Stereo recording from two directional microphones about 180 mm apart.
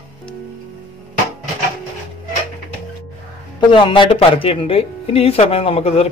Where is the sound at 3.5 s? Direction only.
25° left (ahead or behind).